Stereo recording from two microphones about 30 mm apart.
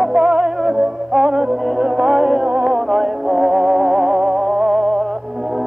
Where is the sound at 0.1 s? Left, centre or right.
Centre.